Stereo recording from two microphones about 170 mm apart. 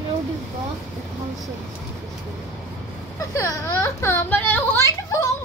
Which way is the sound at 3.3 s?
20° left (ahead or behind).